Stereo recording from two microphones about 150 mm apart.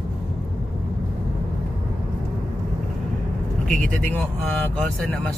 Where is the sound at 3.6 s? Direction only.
5° left (ahead or behind).